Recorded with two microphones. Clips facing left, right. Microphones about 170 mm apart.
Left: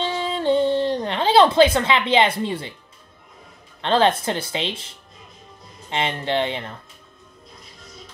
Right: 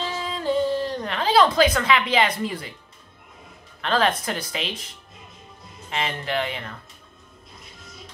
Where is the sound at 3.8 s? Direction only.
25° left (ahead or behind).